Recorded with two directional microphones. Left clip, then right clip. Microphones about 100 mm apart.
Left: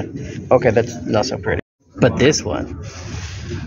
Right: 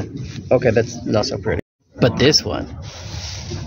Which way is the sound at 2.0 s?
20° right (ahead or behind).